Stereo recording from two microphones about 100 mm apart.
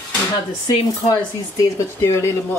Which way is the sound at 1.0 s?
30° left (ahead or behind).